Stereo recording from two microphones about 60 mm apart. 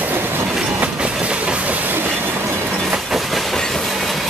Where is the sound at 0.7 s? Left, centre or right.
Centre.